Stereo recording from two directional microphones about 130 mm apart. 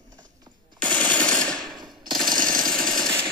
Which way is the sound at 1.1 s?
10° left (ahead or behind).